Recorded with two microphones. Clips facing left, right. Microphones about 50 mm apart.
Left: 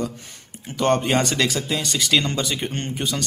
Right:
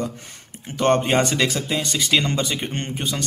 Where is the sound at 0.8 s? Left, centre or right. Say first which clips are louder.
Right 1 dB; right.